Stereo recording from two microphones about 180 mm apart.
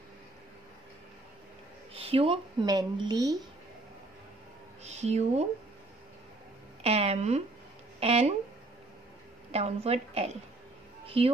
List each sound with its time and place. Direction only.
2.0 s speech: 30° right (ahead or behind)
4.8 s a woman's voice: 40° right (ahead or behind)
6.8 s a woman's voice: 35° right (ahead or behind)
9.5 s a woman's voice: 35° right (ahead or behind)